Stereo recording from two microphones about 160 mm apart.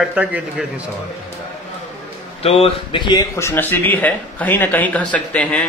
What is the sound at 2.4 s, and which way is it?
Speech, 35° left (ahead or behind).